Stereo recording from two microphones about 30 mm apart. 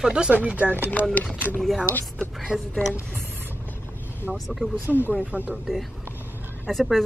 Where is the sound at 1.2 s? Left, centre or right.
Left.